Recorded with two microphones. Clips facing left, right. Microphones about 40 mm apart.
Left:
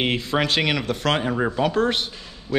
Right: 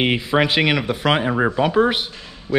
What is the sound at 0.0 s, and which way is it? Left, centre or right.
Speech, centre.